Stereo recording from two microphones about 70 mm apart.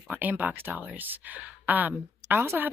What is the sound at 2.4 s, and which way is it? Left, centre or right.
Speech, right.